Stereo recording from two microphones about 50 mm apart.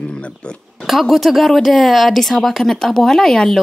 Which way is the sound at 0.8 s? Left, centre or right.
Centre.